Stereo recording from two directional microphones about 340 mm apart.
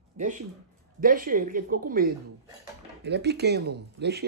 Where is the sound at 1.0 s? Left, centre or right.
Right.